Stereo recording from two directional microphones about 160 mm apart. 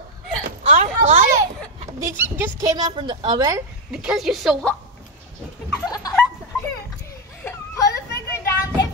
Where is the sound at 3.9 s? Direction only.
5° right (ahead or behind).